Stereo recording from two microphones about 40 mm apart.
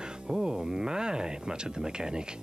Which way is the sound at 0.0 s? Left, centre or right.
Centre.